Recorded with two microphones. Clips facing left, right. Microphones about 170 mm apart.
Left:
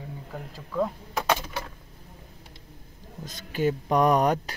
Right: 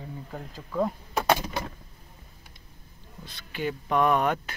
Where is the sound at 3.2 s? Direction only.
45° left (ahead or behind).